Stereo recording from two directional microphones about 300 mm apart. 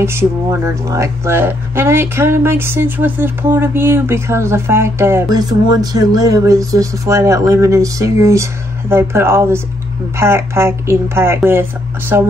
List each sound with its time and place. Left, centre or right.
0.0 s a woman's voice: centre